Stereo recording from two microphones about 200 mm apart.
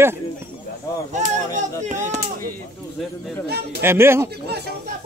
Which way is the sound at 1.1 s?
40° right (ahead or behind).